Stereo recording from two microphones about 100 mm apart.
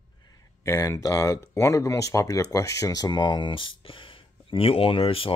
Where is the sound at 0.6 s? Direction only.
30° left (ahead or behind).